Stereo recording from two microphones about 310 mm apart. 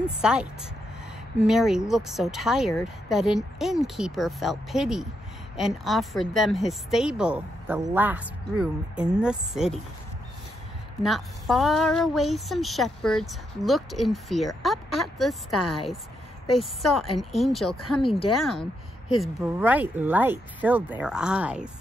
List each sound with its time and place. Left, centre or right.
0.2 s speech: centre
11.0 s speech: centre
14.9 s speech: left
17.2 s speech: centre
17.6 s speech: left
19.1 s speech: centre